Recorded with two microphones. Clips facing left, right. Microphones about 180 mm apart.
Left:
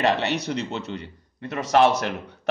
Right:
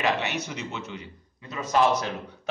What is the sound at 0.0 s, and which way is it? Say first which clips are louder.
A man's voice: left 4 dB; 65° left (ahead or behind).